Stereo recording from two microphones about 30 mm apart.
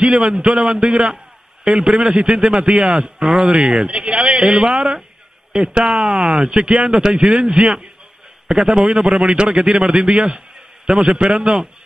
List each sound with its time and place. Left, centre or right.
0.0 s a man's voice: right
6.5 s a man's voice: right